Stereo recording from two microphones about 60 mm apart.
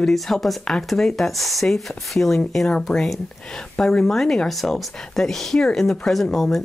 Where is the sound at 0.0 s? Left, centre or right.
Centre.